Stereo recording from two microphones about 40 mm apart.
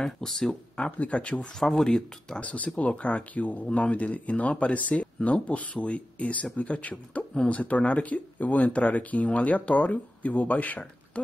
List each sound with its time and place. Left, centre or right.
0.0 s speech: centre
0.9 s speech: left
1.6 s speech: centre
1.9 s speech: centre
2.4 s speech: left